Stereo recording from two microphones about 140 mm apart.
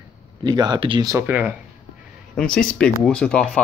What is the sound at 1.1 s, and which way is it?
Speech, 15° right (ahead or behind).